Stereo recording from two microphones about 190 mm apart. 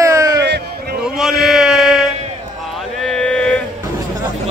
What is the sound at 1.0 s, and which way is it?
Chant, centre (ahead or behind).